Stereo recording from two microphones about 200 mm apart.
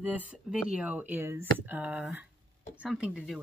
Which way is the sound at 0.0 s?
10° right (ahead or behind).